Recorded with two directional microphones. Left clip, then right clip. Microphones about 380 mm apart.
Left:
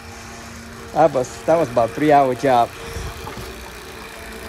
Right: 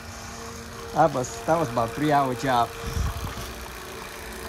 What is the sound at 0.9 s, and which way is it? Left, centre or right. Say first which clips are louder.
Speech: left 6 dB; centre.